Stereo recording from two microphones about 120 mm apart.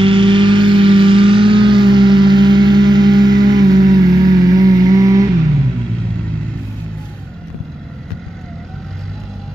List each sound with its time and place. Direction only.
0.0 s vehicle: 45° right (ahead or behind)